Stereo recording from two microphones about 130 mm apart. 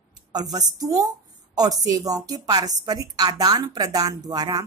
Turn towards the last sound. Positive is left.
turn(degrees=-30)  # may be behind; listen again after turning